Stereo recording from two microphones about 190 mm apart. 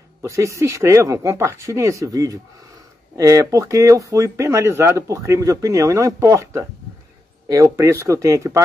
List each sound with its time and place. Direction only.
0.2 s speech: 15° right (ahead or behind)